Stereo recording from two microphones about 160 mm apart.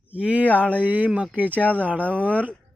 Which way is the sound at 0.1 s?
10° right (ahead or behind).